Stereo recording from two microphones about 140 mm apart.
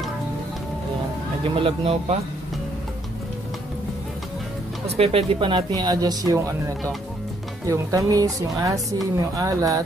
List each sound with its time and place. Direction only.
1.5 s speech: 45° right (ahead or behind)
4.9 s speech: 45° right (ahead or behind); by 6.4 s 25° right (ahead or behind)
7.6 s speech: 20° right (ahead or behind)